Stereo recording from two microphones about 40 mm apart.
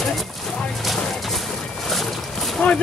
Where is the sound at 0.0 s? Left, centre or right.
Centre.